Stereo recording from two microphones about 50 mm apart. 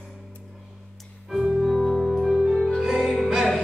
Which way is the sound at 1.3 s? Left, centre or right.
Centre.